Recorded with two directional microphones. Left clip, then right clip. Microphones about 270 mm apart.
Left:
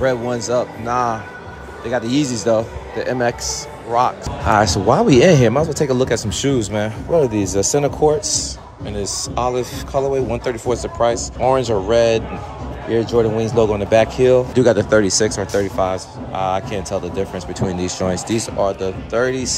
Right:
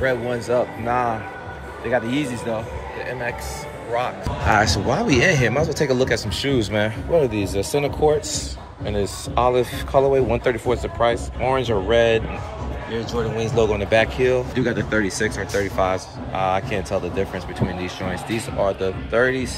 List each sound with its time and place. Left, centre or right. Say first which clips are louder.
0.0 s speech: left 3 dB; centre
3.9 s speech: left 7 dB; centre
7.5 s speech: left 5 dB; left
8.8 s speech: left 1 dB; centre